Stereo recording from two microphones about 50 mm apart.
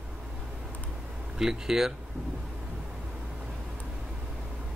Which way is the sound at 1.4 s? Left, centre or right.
Centre.